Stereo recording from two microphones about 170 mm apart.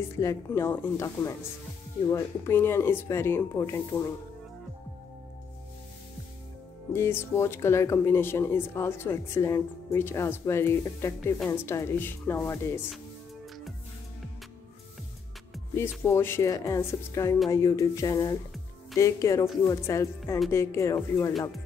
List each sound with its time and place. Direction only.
0.0 s speech: 15° left (ahead or behind)
6.9 s speech: 15° left (ahead or behind)
16.0 s speech: 15° left (ahead or behind)